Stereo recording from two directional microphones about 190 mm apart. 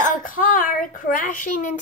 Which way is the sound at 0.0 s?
45° left (ahead or behind).